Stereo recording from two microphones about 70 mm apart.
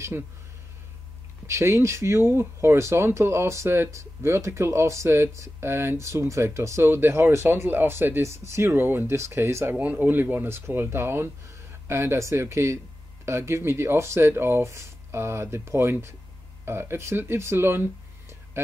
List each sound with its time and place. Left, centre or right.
1.5 s speech: right
9.8 s speech: right